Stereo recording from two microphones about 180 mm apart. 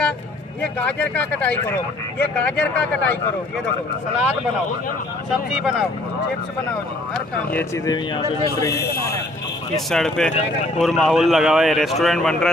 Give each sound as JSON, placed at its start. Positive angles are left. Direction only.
{"t": 0.6, "sound": "speech", "side_deg": 10}
{"t": 5.6, "sound": "a man's voice", "side_deg": 0}
{"t": 7.5, "sound": "speech", "side_deg": 15}
{"t": 9.8, "sound": "a man's voice", "side_deg": 0}